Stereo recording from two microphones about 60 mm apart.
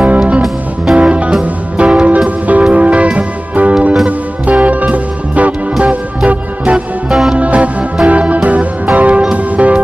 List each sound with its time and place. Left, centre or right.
0.0 s music: right
7.1 s music: centre
7.3 s music: right